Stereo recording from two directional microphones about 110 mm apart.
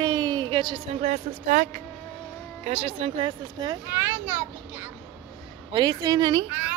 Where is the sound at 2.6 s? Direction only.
70° right (ahead or behind).